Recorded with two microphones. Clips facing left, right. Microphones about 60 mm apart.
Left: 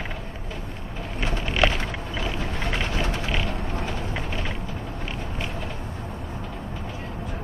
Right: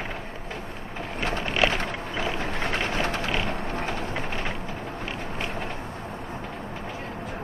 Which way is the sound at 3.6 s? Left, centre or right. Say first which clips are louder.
Right 1 dB; right.